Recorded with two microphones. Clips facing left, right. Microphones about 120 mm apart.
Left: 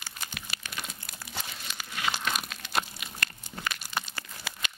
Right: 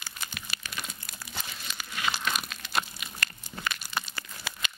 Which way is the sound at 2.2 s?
55° left (ahead or behind).